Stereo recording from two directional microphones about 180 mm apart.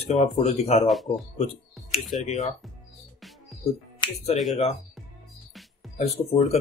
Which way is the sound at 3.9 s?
25° left (ahead or behind).